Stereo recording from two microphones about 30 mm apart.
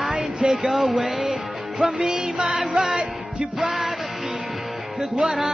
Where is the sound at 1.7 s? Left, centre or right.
Centre.